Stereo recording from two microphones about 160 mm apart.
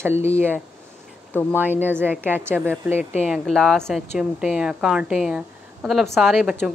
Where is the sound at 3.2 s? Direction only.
Centre (ahead or behind).